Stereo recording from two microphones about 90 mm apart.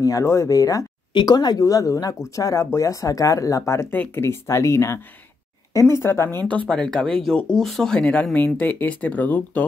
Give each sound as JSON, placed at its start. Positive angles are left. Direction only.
{"t": 0.0, "sound": "speech", "side_deg": 35}
{"t": 3.9, "sound": "speech", "side_deg": 25}
{"t": 6.7, "sound": "speech", "side_deg": 10}